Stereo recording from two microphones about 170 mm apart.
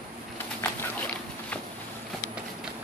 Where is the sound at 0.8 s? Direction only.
10° left (ahead or behind).